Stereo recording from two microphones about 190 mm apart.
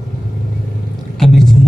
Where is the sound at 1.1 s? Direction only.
Centre (ahead or behind).